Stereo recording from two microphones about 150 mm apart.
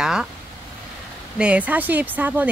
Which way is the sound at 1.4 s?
10° right (ahead or behind).